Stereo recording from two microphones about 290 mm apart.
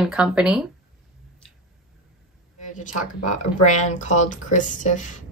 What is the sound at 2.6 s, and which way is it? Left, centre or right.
Speech, left.